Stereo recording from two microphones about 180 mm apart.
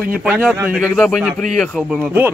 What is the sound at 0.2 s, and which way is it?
A man's voice, 5° right (ahead or behind).